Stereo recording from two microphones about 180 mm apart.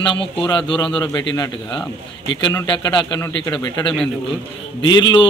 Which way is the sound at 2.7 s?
25° left (ahead or behind).